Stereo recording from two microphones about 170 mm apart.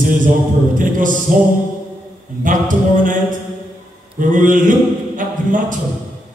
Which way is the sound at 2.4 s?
50° right (ahead or behind).